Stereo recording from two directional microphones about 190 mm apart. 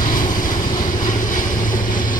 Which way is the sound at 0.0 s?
45° left (ahead or behind).